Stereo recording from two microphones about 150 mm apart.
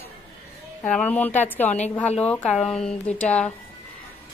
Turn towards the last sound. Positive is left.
turn(degrees=10)  # may be behind; listen again after turning